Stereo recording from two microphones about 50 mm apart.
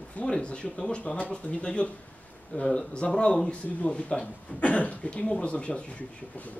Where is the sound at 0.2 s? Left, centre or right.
Left.